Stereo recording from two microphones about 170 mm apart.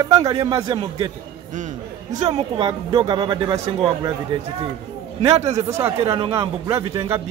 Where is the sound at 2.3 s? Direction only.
30° right (ahead or behind).